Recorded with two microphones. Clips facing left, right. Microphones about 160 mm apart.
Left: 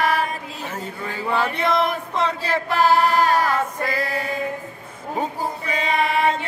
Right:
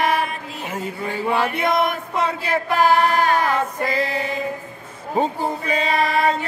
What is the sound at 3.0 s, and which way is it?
Music, 35° left (ahead or behind).